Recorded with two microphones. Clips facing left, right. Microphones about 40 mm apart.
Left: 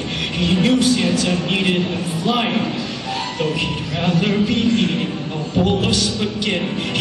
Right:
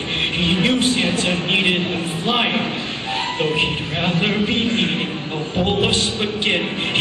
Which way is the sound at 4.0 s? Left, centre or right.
Right.